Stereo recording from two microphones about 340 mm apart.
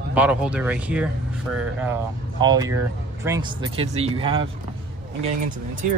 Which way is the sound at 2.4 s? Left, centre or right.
Centre.